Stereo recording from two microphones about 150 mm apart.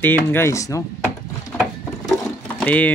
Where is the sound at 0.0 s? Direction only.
15° left (ahead or behind).